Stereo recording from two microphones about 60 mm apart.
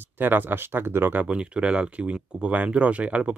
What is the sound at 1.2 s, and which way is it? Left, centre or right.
Speech, centre.